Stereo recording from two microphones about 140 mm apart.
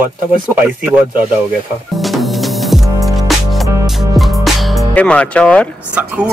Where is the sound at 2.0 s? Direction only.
Centre (ahead or behind).